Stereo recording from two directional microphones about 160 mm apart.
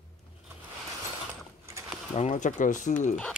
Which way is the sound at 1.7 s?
15° right (ahead or behind).